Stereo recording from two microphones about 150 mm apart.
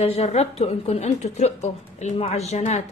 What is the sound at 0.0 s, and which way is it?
A woman's voice, 45° left (ahead or behind).